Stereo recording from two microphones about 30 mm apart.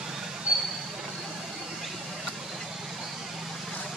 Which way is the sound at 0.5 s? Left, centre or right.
Right.